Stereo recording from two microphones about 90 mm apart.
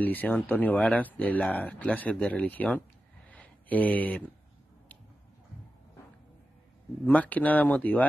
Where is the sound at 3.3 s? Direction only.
15° left (ahead or behind).